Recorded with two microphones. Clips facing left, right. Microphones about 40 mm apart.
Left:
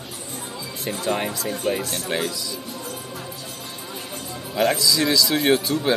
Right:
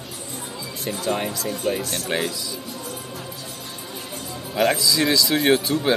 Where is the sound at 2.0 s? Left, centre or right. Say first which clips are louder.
Right 1 dB; centre.